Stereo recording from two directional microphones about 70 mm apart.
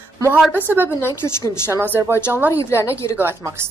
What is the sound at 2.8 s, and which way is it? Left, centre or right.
Speech, left.